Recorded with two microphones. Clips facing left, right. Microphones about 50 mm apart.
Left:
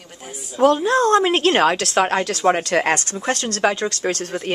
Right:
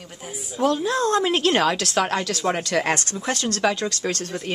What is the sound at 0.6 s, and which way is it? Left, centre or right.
A woman's voice, left.